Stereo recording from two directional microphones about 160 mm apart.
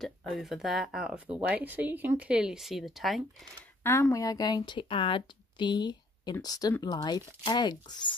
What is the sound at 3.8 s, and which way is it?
Speech, 15° left (ahead or behind).